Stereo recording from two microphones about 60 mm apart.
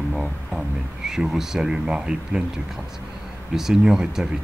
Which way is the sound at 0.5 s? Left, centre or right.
Centre.